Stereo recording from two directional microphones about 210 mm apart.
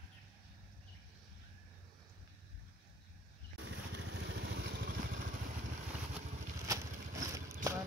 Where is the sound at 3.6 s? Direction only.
55° right (ahead or behind).